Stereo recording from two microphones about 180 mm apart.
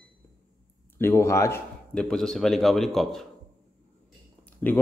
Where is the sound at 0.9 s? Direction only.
15° left (ahead or behind).